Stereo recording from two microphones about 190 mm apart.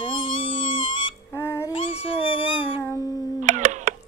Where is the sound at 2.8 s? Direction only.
20° left (ahead or behind).